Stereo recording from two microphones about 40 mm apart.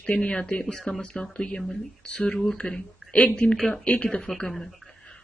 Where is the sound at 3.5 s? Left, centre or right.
Centre.